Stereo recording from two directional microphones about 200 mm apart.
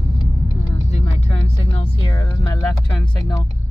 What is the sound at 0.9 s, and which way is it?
Vehicle, 30° left (ahead or behind).